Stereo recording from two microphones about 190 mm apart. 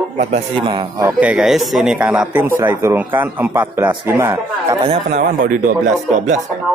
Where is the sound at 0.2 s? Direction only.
35° right (ahead or behind).